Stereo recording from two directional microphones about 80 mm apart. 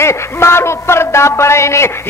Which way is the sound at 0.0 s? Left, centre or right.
Left.